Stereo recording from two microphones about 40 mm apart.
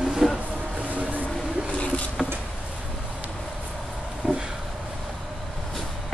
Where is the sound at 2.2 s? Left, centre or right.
Centre.